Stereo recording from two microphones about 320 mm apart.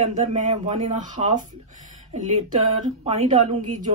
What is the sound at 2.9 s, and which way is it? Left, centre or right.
Speech, centre.